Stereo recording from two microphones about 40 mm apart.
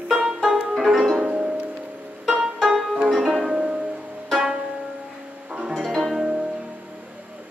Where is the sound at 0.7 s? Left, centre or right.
Centre.